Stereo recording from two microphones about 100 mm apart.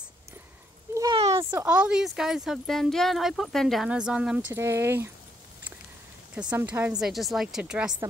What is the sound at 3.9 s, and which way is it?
Speech, 10° right (ahead or behind).